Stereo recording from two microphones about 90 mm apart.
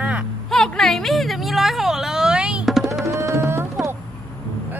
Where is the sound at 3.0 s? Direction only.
35° right (ahead or behind).